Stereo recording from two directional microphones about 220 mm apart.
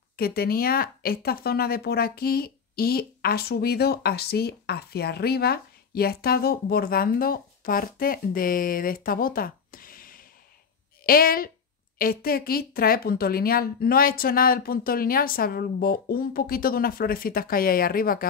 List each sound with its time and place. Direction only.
0.1 s speech: 45° left (ahead or behind)